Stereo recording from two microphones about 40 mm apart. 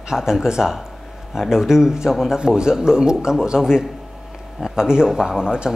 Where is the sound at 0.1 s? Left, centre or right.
Centre.